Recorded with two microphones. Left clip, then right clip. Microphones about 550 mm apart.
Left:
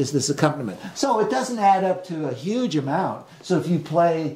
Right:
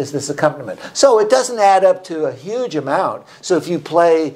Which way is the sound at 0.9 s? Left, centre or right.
Right.